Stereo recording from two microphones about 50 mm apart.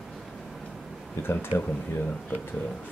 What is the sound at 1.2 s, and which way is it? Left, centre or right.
Speech, left.